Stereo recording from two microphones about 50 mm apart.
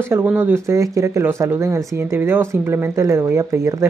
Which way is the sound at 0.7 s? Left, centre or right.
Right.